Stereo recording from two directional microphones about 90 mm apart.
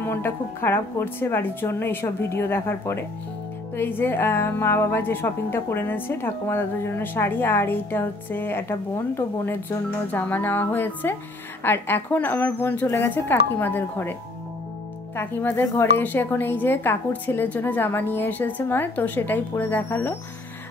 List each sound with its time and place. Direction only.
0.0 s a woman's voice: 25° left (ahead or behind)
15.1 s a woman's voice: 20° left (ahead or behind)